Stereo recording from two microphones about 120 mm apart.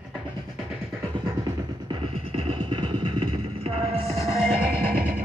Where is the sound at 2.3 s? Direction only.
50° right (ahead or behind).